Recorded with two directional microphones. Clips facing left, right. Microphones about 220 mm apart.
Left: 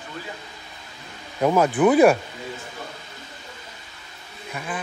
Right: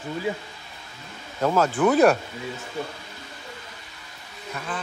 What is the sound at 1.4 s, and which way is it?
Speech, 15° left (ahead or behind).